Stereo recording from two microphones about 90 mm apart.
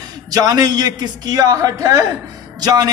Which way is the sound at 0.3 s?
40° right (ahead or behind).